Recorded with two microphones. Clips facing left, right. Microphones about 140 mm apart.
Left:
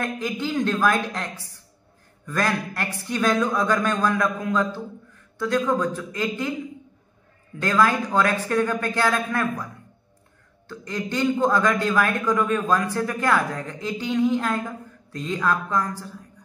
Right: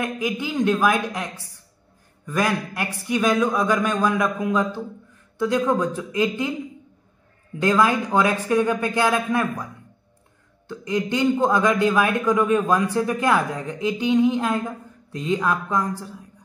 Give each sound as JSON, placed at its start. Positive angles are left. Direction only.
{"t": 0.0, "sound": "a man's voice", "side_deg": -10}
{"t": 7.6, "sound": "a man's voice", "side_deg": -20}
{"t": 10.7, "sound": "a man's voice", "side_deg": -20}